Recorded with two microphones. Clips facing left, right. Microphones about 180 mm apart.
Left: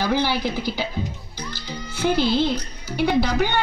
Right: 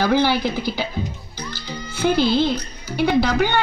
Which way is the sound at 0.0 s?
60° right (ahead or behind).